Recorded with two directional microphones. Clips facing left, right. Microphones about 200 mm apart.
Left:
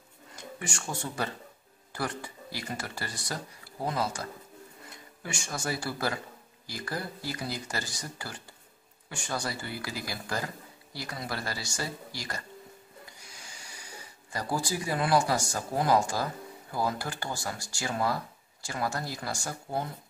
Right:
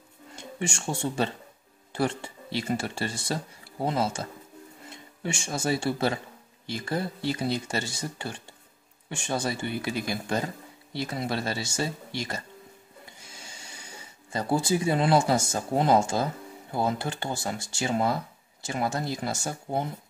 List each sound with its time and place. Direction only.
0.4 s speech: 25° right (ahead or behind)
13.0 s a sound: 25° right (ahead or behind)
16.7 s speech: 20° right (ahead or behind)